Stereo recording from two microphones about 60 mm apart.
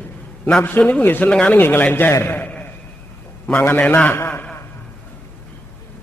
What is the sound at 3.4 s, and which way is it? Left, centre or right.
A man's voice, left.